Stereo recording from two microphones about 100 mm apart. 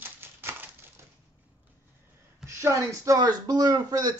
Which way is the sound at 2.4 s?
35° right (ahead or behind).